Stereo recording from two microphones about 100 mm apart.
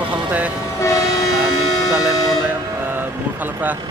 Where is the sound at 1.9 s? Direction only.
5° right (ahead or behind).